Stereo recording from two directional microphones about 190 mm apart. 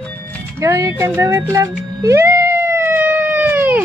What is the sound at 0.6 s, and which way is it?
Music, 15° right (ahead or behind).